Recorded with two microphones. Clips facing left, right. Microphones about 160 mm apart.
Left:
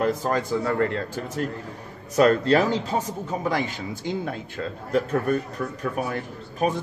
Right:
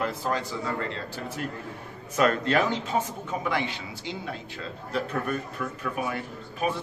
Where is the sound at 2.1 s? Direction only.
35° left (ahead or behind).